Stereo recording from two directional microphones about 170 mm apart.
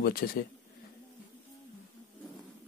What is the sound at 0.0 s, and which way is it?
Speech, 60° left (ahead or behind).